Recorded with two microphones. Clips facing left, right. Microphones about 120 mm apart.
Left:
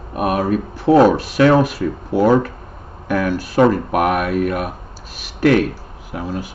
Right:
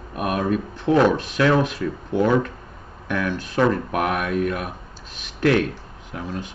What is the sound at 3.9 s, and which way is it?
Speech, 65° left (ahead or behind).